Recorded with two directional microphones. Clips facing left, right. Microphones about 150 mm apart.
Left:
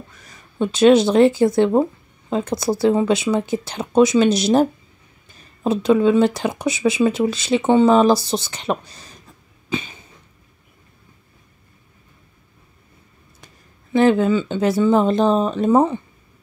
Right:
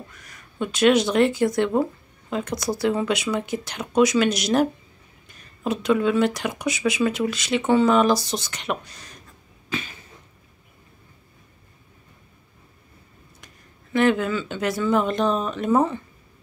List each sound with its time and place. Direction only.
0.3 s speech: 25° left (ahead or behind)
9.7 s cough: 20° left (ahead or behind)
13.9 s speech: 30° left (ahead or behind)